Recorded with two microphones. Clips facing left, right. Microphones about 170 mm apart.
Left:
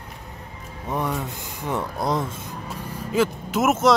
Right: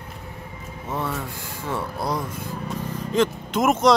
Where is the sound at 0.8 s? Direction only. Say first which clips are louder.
Left 2 dB; 15° left (ahead or behind).